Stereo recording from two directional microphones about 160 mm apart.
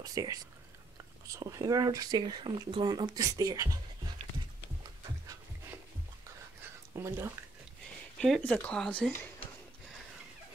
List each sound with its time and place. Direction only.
0.0 s speech: 25° right (ahead or behind)
7.0 s speech: 20° right (ahead or behind)
8.2 s speech: 5° left (ahead or behind)